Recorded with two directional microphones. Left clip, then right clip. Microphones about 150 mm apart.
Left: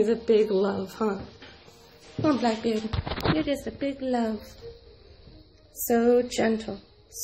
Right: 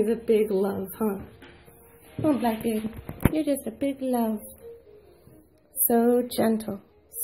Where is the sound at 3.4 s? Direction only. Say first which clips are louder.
Right 2 dB; 35° right (ahead or behind).